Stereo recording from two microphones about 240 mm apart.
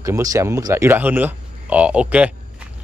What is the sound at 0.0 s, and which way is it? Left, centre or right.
Speech, centre.